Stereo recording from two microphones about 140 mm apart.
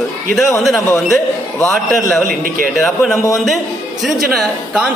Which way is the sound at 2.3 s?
75° right (ahead or behind).